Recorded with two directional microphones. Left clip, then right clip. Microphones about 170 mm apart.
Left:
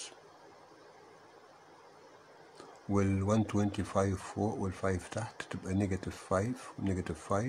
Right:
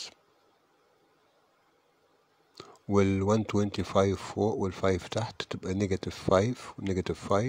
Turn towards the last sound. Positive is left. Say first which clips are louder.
# right 6 dB
turn(degrees=-45)  # may be behind; listen again after turning